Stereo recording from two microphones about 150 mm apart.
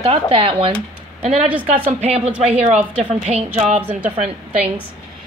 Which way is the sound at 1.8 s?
45° right (ahead or behind).